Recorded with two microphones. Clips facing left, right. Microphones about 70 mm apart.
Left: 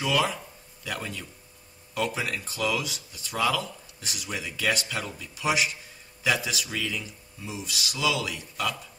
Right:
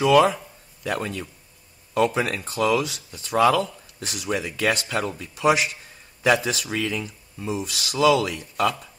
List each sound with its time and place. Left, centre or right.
0.0 s speech: right